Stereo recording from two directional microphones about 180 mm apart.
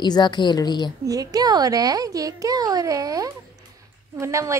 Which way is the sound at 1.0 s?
20° right (ahead or behind).